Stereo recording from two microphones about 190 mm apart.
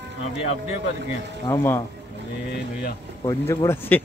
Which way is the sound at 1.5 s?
15° left (ahead or behind).